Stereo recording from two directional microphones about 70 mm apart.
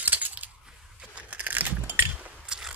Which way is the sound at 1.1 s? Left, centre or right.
Right.